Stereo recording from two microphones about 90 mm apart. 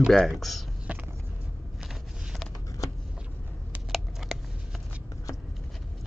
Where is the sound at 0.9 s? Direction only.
15° right (ahead or behind).